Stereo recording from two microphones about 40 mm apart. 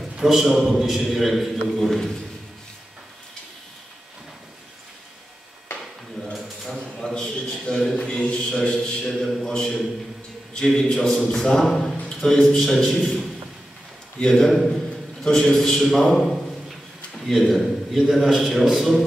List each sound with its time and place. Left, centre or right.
0.2 s a man's voice: centre
6.3 s mechanisms: centre
7.0 s a sound: left
10.7 s a man's voice: centre
12.7 s a man's voice: centre
14.2 s a man's voice: centre
16.0 s a man's voice: centre